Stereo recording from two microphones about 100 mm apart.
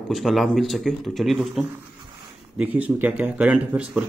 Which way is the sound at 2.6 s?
15° right (ahead or behind).